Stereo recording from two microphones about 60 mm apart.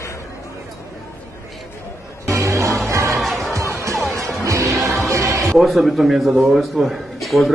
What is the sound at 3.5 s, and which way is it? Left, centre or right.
Music, right.